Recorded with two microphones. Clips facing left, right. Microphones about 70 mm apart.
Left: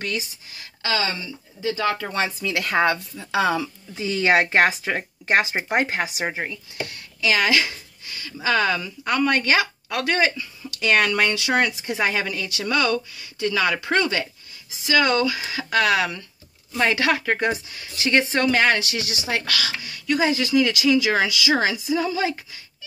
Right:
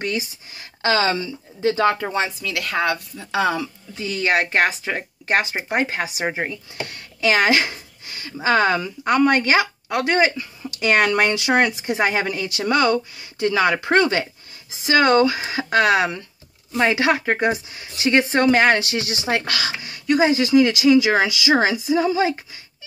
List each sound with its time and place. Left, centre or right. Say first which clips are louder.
0.0 s speech: right 3 dB; right
0.8 s speech: right 6 dB; right
2.5 s speech: left 3 dB; centre
2.9 s speech: even; centre
6.0 s speech: right 2 dB; centre
6.3 s speech: right 3 dB; right
6.9 s speech: right 3 dB; right